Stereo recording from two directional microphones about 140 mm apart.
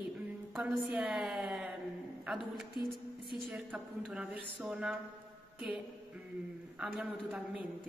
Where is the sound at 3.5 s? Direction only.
10° right (ahead or behind).